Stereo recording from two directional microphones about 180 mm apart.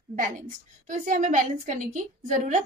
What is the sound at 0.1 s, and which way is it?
A woman's voice, 50° right (ahead or behind).